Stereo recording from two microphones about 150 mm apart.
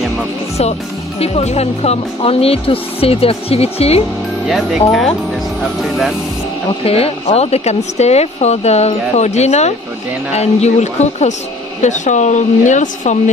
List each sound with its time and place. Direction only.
1.2 s speech: 45° left (ahead or behind)
5.8 s speech: centre (ahead or behind)
6.8 s speech: 40° left (ahead or behind)